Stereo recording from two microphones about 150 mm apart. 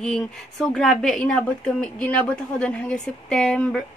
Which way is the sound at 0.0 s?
5° left (ahead or behind).